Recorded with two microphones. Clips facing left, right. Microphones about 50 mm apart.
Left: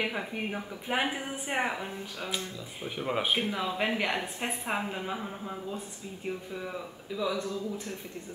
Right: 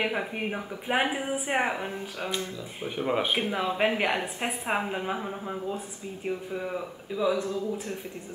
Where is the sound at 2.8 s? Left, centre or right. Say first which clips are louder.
Right 3 dB; centre.